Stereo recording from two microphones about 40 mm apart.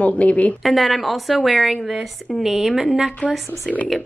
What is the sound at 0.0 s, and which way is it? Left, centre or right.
Speech, left.